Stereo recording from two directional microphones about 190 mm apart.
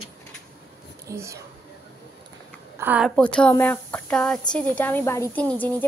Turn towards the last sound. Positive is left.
turn(degrees=10)  # may be behind; listen again after turning